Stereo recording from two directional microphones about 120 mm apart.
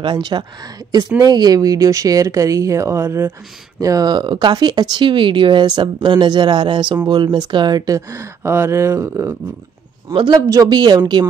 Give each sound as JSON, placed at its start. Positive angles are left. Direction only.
{"t": 0.0, "sound": "speech", "side_deg": -40}